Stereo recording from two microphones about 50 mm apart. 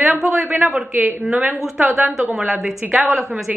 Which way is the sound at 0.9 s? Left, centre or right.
Right.